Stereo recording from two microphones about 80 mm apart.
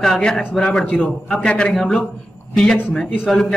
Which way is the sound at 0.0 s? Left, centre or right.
Centre.